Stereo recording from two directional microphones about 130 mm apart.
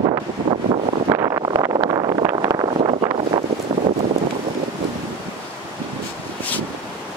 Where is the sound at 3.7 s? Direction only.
30° right (ahead or behind).